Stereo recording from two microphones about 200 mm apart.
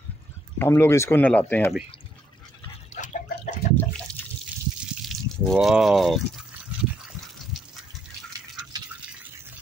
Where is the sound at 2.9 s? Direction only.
35° left (ahead or behind).